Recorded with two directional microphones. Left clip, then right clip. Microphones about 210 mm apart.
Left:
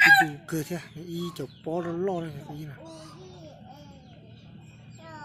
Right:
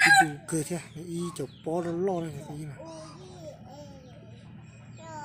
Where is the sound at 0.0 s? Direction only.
45° right (ahead or behind).